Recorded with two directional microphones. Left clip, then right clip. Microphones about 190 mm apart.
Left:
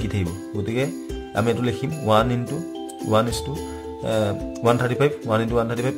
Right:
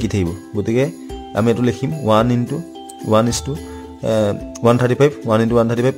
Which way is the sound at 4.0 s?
40° right (ahead or behind).